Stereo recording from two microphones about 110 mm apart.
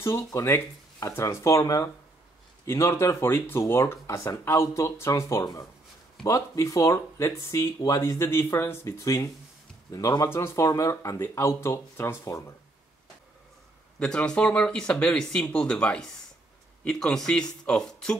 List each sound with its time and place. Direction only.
0.0 s speech: 30° left (ahead or behind)
13.9 s speech: 10° left (ahead or behind)